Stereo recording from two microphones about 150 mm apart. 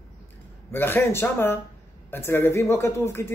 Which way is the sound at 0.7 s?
15° left (ahead or behind).